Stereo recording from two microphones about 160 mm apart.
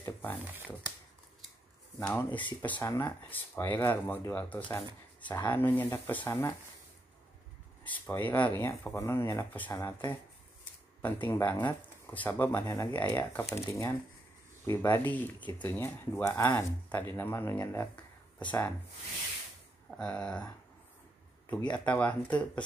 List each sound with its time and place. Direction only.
0.0 s shuffling cards: 10° left (ahead or behind)
2.0 s speech: 10° left (ahead or behind)
7.8 s speech: 10° left (ahead or behind)
20.0 s speech: 5° left (ahead or behind)
21.5 s speech: 10° left (ahead or behind)